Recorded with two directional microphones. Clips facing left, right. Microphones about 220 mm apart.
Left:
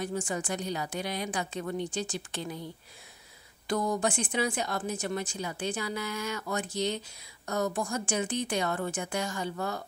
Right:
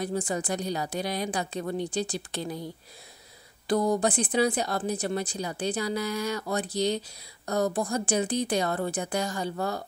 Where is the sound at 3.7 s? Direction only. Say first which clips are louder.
Right 4 dB; 35° right (ahead or behind).